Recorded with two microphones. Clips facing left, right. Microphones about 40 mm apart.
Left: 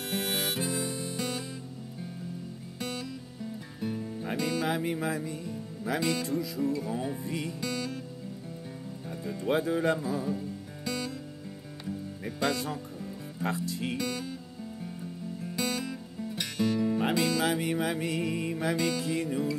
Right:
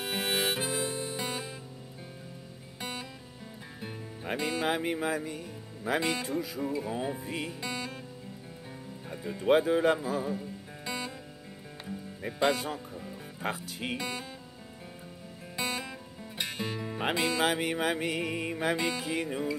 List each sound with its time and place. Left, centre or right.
0.0 s harmonica: right
2.8 s music: right
4.3 s music: right
5.0 s speech: right
6.6 s music: right
7.2 s music: right
7.6 s music: right
9.1 s music: centre
9.5 s music: right; by 12.4 s centre
12.4 s music: right
13.9 s music: right
15.4 s music: right
17.0 s music: right
18.9 s music: right